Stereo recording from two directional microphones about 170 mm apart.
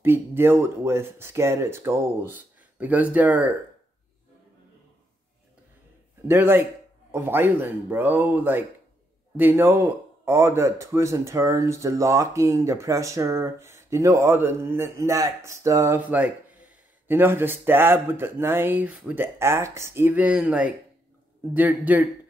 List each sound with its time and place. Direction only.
0.0 s speech: 15° right (ahead or behind)
6.2 s speech: 15° right (ahead or behind)